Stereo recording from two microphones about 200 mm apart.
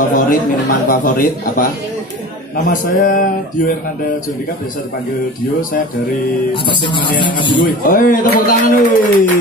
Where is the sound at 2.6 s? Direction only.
45° left (ahead or behind).